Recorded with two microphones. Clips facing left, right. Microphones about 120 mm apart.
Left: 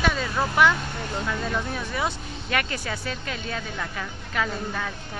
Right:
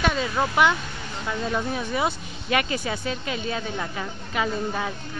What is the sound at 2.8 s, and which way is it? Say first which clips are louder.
Speech: right 3 dB; 20° right (ahead or behind).